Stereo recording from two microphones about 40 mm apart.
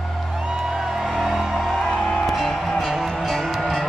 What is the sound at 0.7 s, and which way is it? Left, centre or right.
Music, centre.